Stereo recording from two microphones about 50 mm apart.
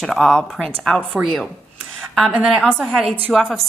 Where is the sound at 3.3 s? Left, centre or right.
Centre.